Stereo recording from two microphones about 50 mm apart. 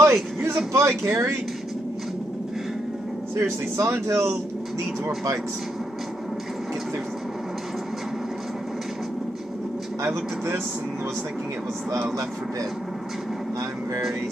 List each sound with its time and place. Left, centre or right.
0.0 s vehicle: right
0.7 s speech: right
3.3 s speech: right
10.0 s speech: right
11.9 s speech: right